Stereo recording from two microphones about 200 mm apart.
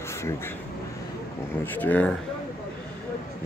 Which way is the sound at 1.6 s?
10° left (ahead or behind).